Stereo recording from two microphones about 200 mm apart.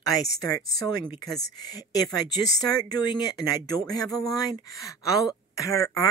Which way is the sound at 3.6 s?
20° left (ahead or behind).